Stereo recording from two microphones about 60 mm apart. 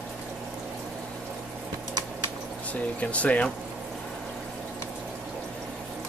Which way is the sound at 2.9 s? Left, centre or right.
Left.